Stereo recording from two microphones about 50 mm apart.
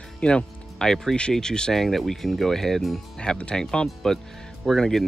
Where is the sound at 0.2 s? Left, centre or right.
Centre.